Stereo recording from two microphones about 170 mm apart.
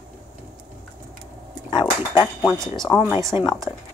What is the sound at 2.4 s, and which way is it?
Speech, centre (ahead or behind).